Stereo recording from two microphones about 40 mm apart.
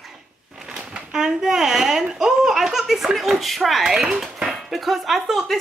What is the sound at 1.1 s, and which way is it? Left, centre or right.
A woman's voice, centre.